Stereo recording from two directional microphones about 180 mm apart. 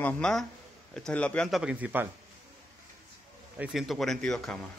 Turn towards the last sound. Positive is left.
turn(degrees=5)  # may be behind; listen again after turning